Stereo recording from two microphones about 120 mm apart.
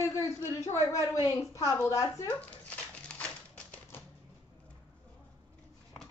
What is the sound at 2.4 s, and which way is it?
Dog, 10° left (ahead or behind).